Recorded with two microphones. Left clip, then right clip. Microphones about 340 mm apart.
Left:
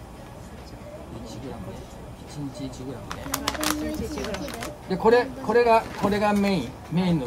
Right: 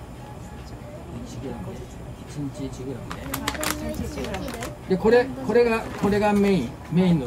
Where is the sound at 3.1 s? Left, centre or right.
Centre.